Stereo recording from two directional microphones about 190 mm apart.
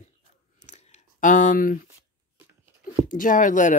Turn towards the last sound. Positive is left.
turn(degrees=45)  # may be behind; listen again after turning